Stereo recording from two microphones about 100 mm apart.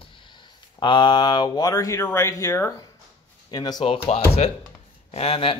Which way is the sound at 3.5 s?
45° left (ahead or behind).